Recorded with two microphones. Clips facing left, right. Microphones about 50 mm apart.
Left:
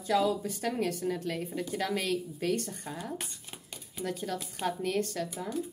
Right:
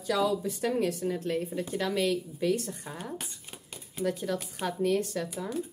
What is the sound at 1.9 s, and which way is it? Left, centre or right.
Speech, left.